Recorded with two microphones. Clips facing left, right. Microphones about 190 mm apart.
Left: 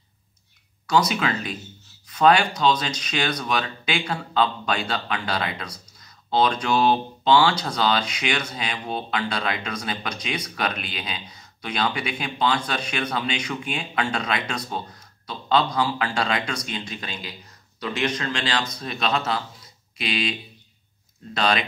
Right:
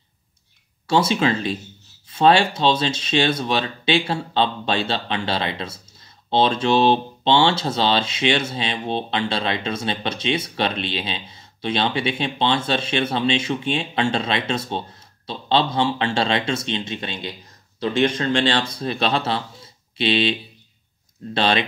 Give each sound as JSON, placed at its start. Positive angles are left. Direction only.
{"t": 0.8, "sound": "speech", "side_deg": -25}